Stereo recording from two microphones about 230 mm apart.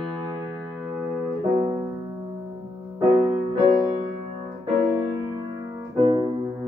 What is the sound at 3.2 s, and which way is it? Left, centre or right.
Music, centre.